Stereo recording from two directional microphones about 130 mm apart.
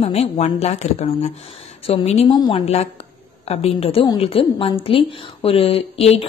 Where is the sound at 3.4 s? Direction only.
50° left (ahead or behind).